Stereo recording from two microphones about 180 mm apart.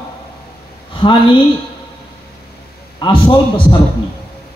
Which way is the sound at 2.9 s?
25° left (ahead or behind).